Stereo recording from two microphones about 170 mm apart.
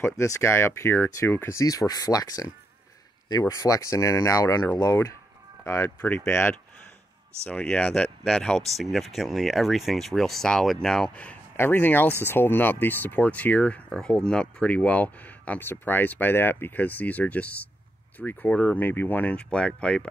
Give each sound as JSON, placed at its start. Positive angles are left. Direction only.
{"t": 0.0, "sound": "speech", "side_deg": 15}